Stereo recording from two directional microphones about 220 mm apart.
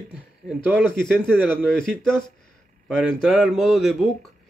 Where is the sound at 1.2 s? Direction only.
10° right (ahead or behind).